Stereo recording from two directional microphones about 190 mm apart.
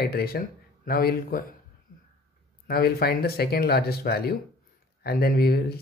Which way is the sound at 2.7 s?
55° left (ahead or behind).